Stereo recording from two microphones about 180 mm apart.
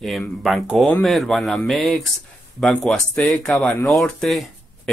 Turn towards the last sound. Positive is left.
turn(degrees=0)  # may be behind; listen again after turning